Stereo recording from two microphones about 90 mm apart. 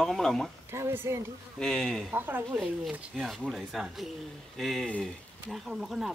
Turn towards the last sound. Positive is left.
turn(degrees=-5)  # may be behind; listen again after turning